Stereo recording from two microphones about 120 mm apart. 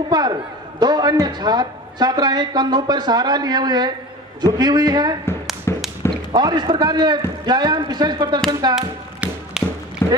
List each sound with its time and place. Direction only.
0.1 s speech: 35° right (ahead or behind)
5.7 s whip: 25° left (ahead or behind)
6.3 s speech: 35° right (ahead or behind)
8.7 s tap: 5° right (ahead or behind)
10.0 s a sound: 20° left (ahead or behind)